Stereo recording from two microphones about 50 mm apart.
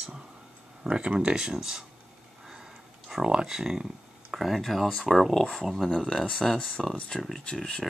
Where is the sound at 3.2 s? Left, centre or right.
Centre.